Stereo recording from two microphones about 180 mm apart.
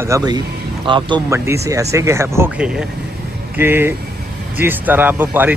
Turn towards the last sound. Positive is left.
turn(degrees=-10)  # may be behind; listen again after turning